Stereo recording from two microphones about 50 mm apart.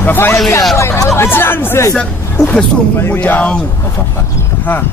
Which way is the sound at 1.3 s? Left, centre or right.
Left.